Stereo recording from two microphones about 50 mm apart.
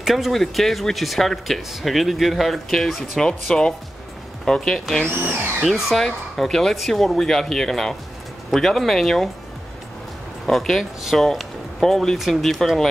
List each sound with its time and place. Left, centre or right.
0.0 s speech: centre
5.0 s speech: right
5.6 s speech: centre
10.4 s speech: centre